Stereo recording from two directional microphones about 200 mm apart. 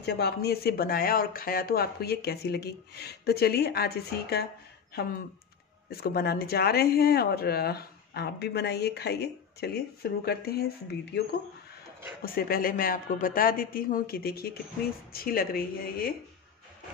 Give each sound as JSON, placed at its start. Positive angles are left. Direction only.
{"t": 0.0, "sound": "speech", "side_deg": 55}
{"t": 5.9, "sound": "speech", "side_deg": 50}